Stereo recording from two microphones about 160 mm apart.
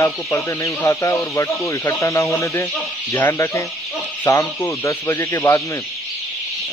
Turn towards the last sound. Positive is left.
turn(degrees=20)  # may be behind; listen again after turning